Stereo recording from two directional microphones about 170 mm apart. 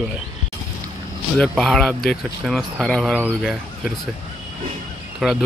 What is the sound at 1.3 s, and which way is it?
Speech, centre (ahead or behind).